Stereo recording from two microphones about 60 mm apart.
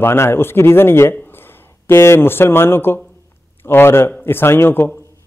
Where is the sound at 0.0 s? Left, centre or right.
Left.